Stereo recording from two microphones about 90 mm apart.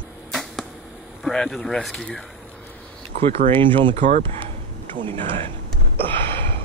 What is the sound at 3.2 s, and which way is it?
Speech, 85° right.